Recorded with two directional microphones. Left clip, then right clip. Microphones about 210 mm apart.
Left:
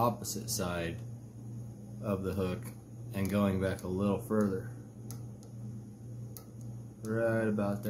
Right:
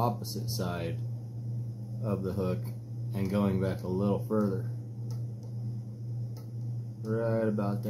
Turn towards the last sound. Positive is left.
turn(degrees=10)  # may be behind; listen again after turning